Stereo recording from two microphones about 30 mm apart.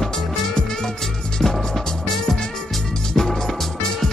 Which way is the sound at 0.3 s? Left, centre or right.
Left.